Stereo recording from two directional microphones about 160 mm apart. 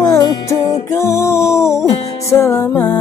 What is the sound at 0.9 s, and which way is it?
Music, 15° left (ahead or behind).